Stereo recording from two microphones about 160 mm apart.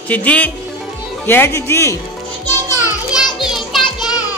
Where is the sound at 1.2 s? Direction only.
15° left (ahead or behind).